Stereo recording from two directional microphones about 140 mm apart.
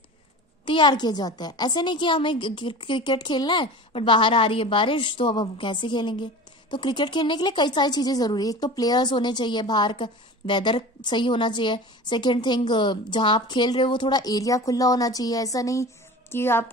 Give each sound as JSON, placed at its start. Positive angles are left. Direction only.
{"t": 0.7, "sound": "a woman's voice", "side_deg": 35}